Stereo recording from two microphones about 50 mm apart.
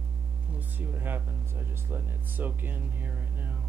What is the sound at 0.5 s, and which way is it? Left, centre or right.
Speech, right.